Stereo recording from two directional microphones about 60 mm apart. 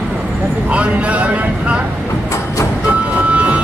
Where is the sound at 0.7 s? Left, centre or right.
Right.